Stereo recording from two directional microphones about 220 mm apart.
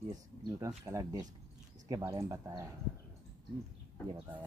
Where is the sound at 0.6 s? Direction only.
15° right (ahead or behind).